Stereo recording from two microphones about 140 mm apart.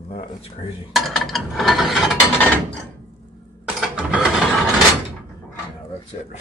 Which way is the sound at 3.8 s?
5° right (ahead or behind).